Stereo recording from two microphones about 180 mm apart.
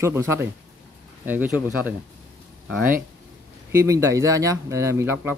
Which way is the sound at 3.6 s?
15° right (ahead or behind).